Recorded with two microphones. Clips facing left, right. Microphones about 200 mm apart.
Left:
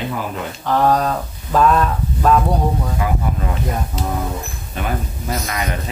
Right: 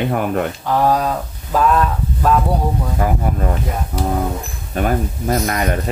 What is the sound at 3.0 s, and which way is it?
Speech, 45° right (ahead or behind).